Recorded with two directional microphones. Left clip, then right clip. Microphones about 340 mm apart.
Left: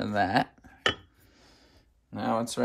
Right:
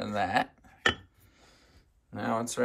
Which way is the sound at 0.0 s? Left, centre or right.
Centre.